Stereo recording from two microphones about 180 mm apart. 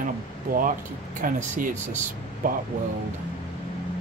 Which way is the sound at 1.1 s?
45° right (ahead or behind).